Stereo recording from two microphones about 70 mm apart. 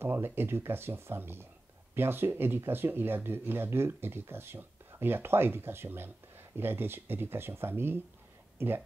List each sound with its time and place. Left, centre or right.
0.0 s speech: right